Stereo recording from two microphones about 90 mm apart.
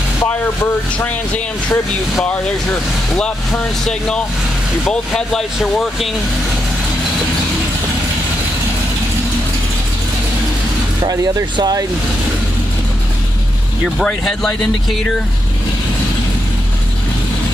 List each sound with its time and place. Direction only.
0.9 s speech: 15° left (ahead or behind)
3.2 s speech: 10° left (ahead or behind)
11.0 s speech: 45° right (ahead or behind)
14.0 s speech: 5° left (ahead or behind)